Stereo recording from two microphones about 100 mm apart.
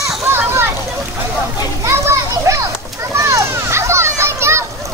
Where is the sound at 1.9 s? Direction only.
30° right (ahead or behind).